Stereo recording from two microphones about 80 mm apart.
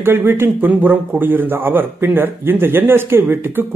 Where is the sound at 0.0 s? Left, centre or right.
Right.